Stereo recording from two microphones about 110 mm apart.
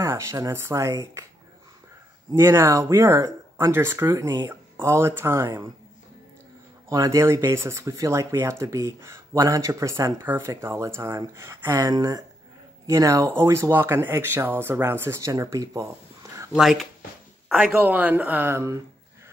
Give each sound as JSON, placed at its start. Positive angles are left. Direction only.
{"t": 0.0, "sound": "speech", "side_deg": -25}
{"t": 2.3, "sound": "speech", "side_deg": -25}
{"t": 6.9, "sound": "speech", "side_deg": -30}
{"t": 16.5, "sound": "speech", "side_deg": 0}